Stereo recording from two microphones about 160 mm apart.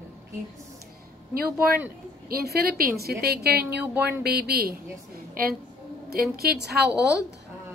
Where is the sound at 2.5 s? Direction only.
75° right (ahead or behind).